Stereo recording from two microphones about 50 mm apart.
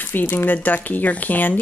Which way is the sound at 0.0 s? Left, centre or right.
Left.